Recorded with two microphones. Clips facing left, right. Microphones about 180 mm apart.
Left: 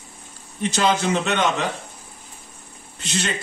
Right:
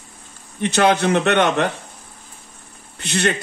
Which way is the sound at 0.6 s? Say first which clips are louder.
Right 4 dB; 65° right (ahead or behind).